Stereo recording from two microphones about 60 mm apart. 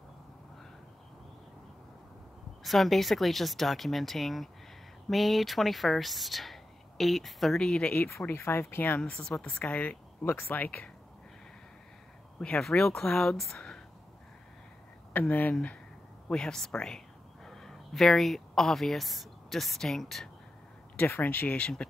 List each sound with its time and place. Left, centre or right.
2.6 s a woman's voice: centre
8.3 s speech: left
8.9 s a woman's voice: centre
10.2 s speech: left
12.4 s speech: centre
15.1 s a woman's voice: left
16.3 s speech: centre
20.9 s speech: left
21.5 s speech: centre